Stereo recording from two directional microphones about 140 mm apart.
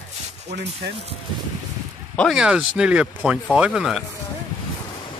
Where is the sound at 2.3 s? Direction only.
5° right (ahead or behind).